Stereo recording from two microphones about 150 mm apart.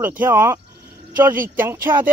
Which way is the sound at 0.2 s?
15° right (ahead or behind).